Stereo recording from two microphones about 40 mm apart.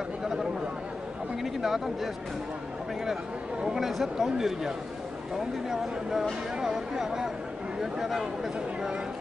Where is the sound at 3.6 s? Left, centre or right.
Centre.